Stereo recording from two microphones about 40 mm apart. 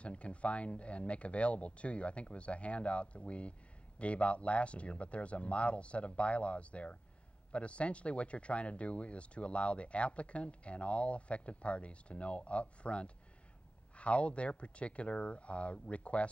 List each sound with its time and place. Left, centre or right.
0.0 s speech: left